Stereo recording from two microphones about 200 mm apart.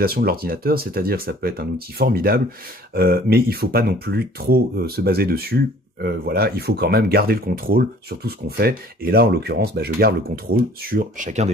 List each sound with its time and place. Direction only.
0.0 s speech: 50° right (ahead or behind)